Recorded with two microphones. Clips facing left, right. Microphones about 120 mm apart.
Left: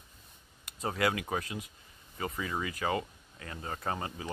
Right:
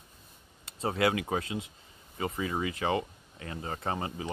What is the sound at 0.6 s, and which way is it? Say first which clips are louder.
Speech: right 3 dB; 30° right (ahead or behind).